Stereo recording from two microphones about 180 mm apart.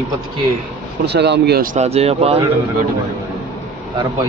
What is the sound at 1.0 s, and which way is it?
Speech, 70° right (ahead or behind).